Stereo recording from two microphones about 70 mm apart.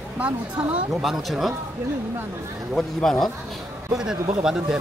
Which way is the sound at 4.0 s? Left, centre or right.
Centre.